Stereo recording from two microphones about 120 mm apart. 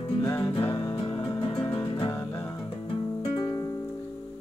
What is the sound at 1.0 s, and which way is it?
Music, 50° left (ahead or behind).